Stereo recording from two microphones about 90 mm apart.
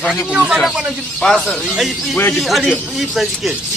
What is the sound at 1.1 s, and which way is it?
A man's voice, 10° left (ahead or behind).